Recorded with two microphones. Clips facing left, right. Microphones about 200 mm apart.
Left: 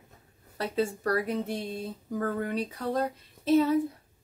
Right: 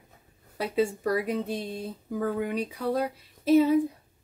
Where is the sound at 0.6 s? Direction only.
15° right (ahead or behind).